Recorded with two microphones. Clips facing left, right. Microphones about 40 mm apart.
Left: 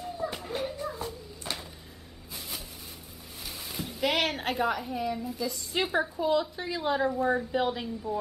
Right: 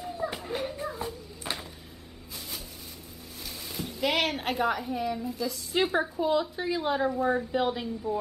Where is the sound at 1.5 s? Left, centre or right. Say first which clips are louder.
Right 2 dB; right.